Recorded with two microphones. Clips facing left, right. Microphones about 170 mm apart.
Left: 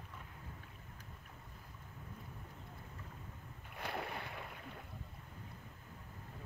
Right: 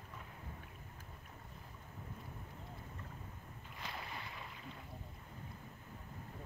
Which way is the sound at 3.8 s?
60° left (ahead or behind).